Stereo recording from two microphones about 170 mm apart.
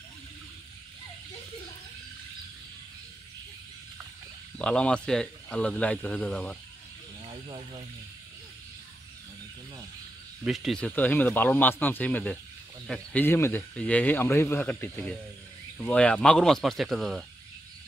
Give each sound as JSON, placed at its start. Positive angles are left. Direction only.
{"t": 4.6, "sound": "a man's voice", "side_deg": 5}
{"t": 7.2, "sound": "a sound", "side_deg": -25}
{"t": 10.4, "sound": "a man's voice", "side_deg": 0}